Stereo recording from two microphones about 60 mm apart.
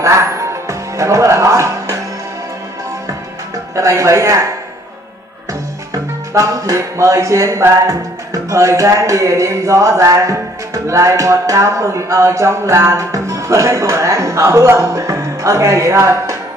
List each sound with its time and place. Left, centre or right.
0.0 s music: right
3.7 s music: right
6.3 s music: right